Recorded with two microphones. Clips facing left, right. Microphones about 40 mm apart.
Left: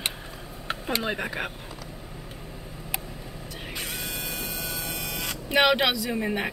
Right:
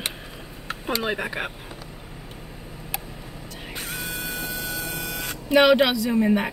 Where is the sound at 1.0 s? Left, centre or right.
Centre.